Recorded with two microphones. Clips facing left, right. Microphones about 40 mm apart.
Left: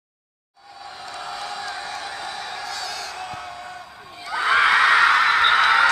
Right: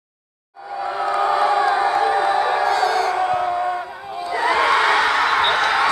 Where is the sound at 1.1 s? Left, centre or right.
Right.